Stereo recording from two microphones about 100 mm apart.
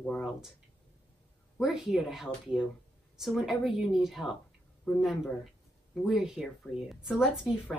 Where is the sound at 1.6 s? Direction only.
5° right (ahead or behind).